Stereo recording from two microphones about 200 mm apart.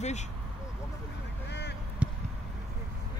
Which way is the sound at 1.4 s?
55° left (ahead or behind).